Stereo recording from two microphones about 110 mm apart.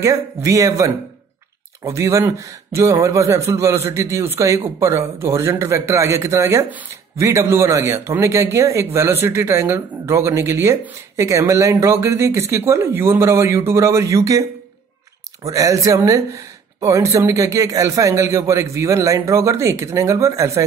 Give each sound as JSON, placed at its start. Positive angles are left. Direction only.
{"t": 0.0, "sound": "a man's voice", "side_deg": -30}
{"t": 15.4, "sound": "a man's voice", "side_deg": -30}